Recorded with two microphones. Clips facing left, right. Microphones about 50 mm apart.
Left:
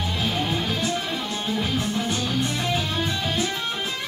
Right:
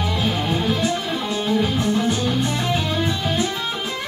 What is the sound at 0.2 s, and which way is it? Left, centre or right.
Music, right.